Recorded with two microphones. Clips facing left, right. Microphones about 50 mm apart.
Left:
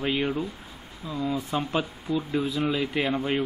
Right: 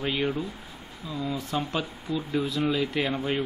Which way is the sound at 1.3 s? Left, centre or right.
Centre.